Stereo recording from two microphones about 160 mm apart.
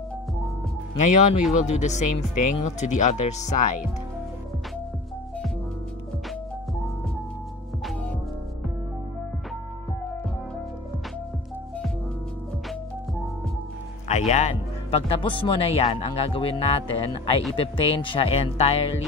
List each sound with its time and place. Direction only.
0.9 s speech: 50° left (ahead or behind)
14.0 s speech: 45° left (ahead or behind)